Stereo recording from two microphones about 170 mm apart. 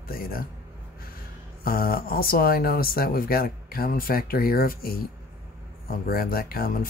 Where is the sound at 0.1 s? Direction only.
60° left (ahead or behind).